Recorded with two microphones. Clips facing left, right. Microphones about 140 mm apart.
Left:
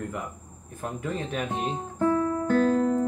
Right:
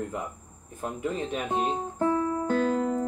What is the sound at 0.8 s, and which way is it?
Speech, 20° right (ahead or behind).